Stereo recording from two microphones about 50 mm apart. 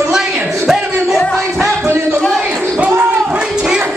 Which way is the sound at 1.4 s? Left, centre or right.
Right.